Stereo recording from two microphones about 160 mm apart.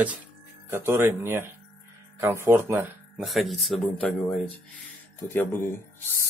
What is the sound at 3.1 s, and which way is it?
Speech, centre (ahead or behind).